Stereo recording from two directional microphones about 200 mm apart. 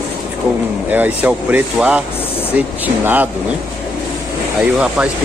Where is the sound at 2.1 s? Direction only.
30° left (ahead or behind).